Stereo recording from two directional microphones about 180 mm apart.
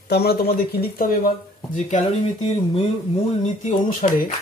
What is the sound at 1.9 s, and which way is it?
Speech, 35° left (ahead or behind).